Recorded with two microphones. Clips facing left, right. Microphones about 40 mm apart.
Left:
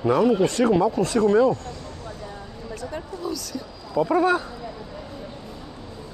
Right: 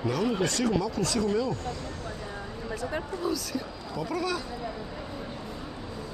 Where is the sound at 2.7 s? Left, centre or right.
Centre.